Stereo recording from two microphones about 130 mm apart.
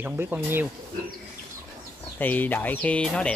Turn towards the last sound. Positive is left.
turn(degrees=10)  # may be behind; listen again after turning